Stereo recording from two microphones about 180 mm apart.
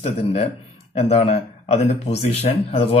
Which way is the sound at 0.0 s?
35° left (ahead or behind).